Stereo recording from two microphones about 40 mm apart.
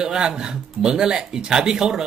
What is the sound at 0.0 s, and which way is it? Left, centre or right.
Speech, centre.